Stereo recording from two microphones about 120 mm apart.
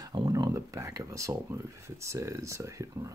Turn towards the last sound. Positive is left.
turn(degrees=-25)  # may be behind; listen again after turning